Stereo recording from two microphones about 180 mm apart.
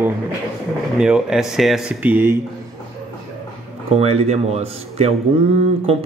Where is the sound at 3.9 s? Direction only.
35° right (ahead or behind).